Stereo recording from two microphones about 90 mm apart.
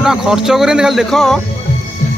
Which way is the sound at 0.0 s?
5° right (ahead or behind).